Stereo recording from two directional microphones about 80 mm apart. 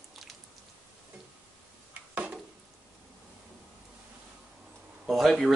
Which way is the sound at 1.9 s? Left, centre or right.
Centre.